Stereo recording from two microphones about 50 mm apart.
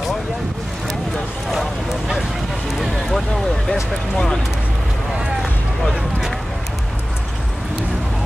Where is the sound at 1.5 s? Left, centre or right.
Centre.